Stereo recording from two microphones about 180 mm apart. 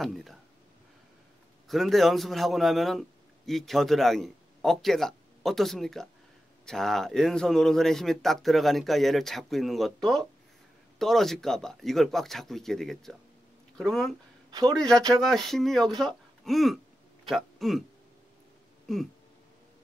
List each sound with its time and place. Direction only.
0.0 s speech: centre (ahead or behind)
1.7 s a man's voice: centre (ahead or behind)
11.0 s speech: centre (ahead or behind)
14.5 s speech: 20° right (ahead or behind)
14.8 s speech: 5° left (ahead or behind)
16.0 s a sound: centre (ahead or behind)